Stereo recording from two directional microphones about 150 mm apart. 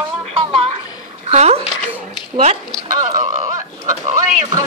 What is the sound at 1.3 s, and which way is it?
Speech, 45° right (ahead or behind).